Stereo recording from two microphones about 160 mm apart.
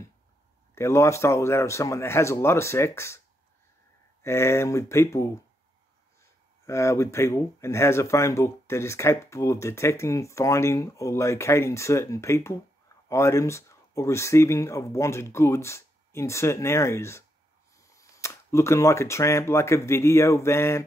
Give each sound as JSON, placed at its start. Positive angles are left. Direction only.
{"t": 0.7, "sound": "speech", "side_deg": 15}
{"t": 4.2, "sound": "speech", "side_deg": 15}
{"t": 6.6, "sound": "speech", "side_deg": 20}